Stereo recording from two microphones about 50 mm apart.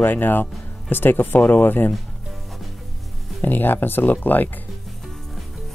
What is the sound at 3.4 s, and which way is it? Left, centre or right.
Speech, left.